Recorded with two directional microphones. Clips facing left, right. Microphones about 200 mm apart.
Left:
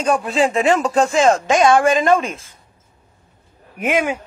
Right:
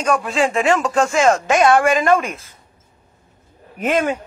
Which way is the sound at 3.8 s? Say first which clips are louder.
Right 1 dB; 10° left (ahead or behind).